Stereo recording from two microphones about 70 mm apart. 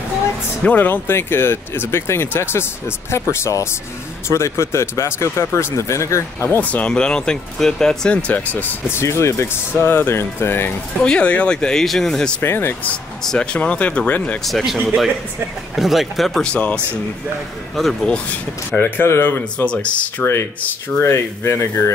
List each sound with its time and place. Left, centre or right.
0.7 s speech: left
6.5 s speech: left
6.9 s speech: centre; by 8.7 s left
8.9 s speech: left
11.1 s speech: centre
12.4 s speech: left
13.2 s speech: centre
14.4 s speech: centre
16.4 s speech: centre
18.0 s speech: centre
18.8 s speech: left
19.6 s speech: centre
21.0 s speech: left